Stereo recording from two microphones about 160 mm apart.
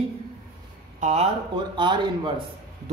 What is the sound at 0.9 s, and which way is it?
Speech, 45° right (ahead or behind).